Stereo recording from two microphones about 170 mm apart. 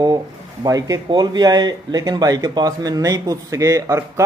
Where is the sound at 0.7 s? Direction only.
20° right (ahead or behind).